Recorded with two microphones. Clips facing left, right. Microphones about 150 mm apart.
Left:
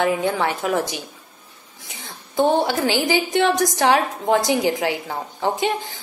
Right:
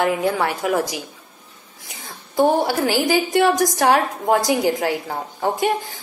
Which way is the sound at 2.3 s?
20° left (ahead or behind).